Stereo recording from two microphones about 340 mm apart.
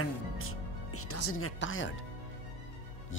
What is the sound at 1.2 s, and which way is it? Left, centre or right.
Speech, left.